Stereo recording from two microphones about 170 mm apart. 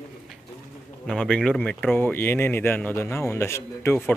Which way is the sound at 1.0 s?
5° left (ahead or behind).